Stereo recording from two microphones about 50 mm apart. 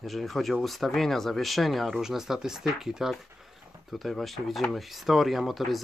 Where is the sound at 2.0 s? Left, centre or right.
Centre.